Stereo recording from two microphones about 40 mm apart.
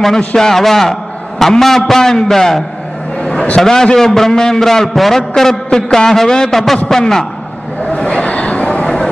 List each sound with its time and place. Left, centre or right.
0.4 s a man's voice: centre
5.3 s a man's voice: centre
8.3 s a sound: left